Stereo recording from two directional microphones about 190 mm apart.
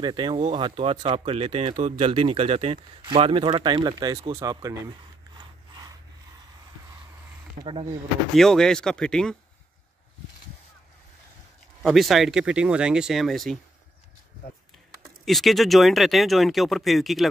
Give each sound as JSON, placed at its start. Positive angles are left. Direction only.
{"t": 0.0, "sound": "speech", "side_deg": -25}
{"t": 5.4, "sound": "a sound", "side_deg": -20}
{"t": 8.4, "sound": "speech", "side_deg": 5}
{"t": 11.8, "sound": "speech", "side_deg": 0}
{"t": 15.2, "sound": "speech", "side_deg": 0}